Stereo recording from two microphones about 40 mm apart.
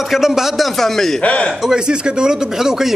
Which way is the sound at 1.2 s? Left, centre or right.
Left.